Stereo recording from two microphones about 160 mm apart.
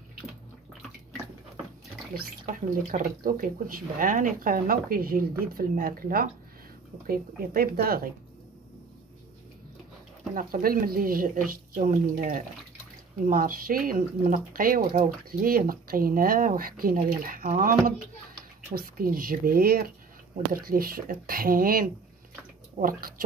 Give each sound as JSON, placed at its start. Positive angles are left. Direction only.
{"t": 2.1, "sound": "speech", "side_deg": -60}
{"t": 10.3, "sound": "speech", "side_deg": -65}